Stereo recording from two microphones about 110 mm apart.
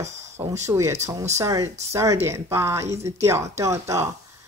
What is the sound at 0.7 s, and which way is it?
Speech, 25° right (ahead or behind).